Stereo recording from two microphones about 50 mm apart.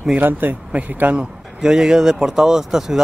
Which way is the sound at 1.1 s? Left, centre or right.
Centre.